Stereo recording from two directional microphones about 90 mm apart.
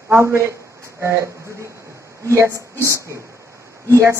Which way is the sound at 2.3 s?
30° right (ahead or behind).